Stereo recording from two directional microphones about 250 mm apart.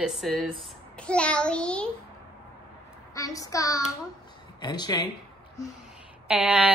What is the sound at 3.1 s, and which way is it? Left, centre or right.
A woman's voice, centre.